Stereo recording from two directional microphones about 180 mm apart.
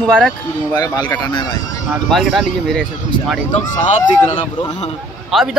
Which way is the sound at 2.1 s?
Centre (ahead or behind).